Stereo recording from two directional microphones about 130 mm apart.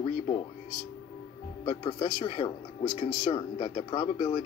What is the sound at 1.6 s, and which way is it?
Speech, 35° left (ahead or behind).